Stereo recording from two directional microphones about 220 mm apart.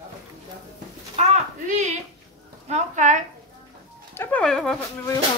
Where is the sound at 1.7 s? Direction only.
35° right (ahead or behind).